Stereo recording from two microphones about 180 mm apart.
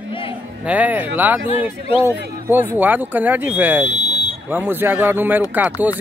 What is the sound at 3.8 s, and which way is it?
Buzzer, 40° right (ahead or behind).